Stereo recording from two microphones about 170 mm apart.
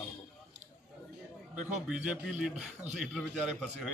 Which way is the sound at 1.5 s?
10° right (ahead or behind).